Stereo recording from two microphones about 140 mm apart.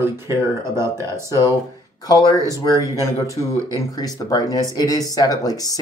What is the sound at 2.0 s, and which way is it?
Speech, 25° left (ahead or behind).